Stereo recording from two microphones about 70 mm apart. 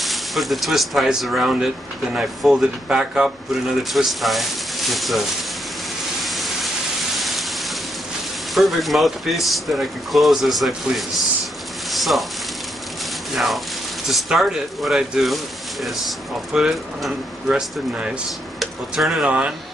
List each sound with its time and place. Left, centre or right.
0.0 s speech: centre
6.2 s a sound: centre
7.2 s rain: centre
8.5 s speech: centre
11.9 s a sound: centre
13.3 s a sound: centre
14.0 s speech: centre
16.5 s speech: centre
19.2 s speech: centre